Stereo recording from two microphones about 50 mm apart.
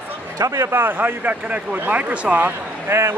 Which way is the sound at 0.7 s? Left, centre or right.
Right.